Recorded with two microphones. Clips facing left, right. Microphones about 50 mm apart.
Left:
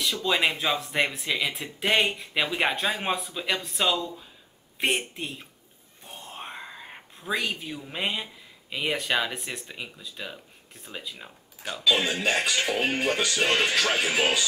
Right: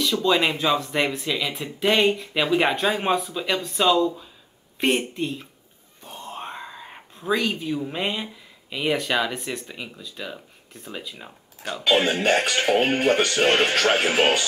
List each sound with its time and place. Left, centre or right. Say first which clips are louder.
0.2 s speech: right 3 dB; centre
6.3 s a sound: right 3 dB; centre
7.2 s speech: right 6 dB; centre
11.0 s speech: even; centre
11.8 s speech: right 4 dB; right